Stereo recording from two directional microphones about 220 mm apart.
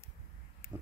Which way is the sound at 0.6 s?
10° left (ahead or behind).